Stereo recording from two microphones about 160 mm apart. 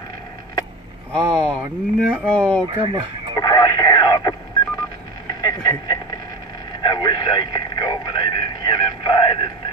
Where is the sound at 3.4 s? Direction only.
25° left (ahead or behind).